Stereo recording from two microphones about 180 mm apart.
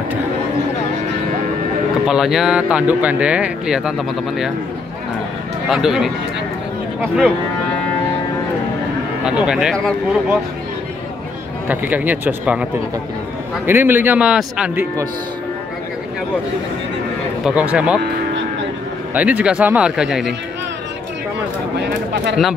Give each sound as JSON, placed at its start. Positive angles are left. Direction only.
{"t": 2.0, "sound": "speech", "side_deg": 0}
{"t": 5.7, "sound": "speech", "side_deg": 0}
{"t": 9.2, "sound": "speech", "side_deg": -5}
{"t": 11.6, "sound": "speech", "side_deg": -10}
{"t": 13.7, "sound": "speech", "side_deg": -10}
{"t": 17.5, "sound": "speech", "side_deg": -5}
{"t": 19.1, "sound": "speech", "side_deg": -5}
{"t": 21.8, "sound": "speech", "side_deg": -70}